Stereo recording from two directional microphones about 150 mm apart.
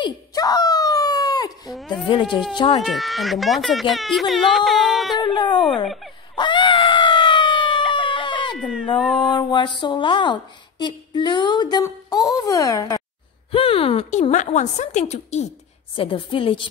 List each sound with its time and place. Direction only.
0.0 s a sound: 25° left (ahead or behind)
1.7 s speech: centre (ahead or behind)
2.5 s speech: 25° left (ahead or behind)
2.8 s speech: centre (ahead or behind)
5.2 s a woman's voice: 30° left (ahead or behind)
6.3 s screaming: 30° left (ahead or behind)
9.4 s a woman's voice: 30° left (ahead or behind)
13.5 s a woman's voice: 40° left (ahead or behind)
14.3 s a woman's voice: 55° left (ahead or behind)
16.0 s a woman's voice: 35° left (ahead or behind)